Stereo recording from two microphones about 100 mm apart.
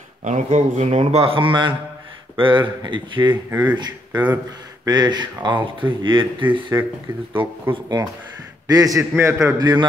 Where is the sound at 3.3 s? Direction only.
20° right (ahead or behind).